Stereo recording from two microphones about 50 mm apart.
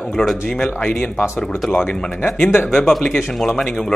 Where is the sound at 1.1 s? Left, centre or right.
Left.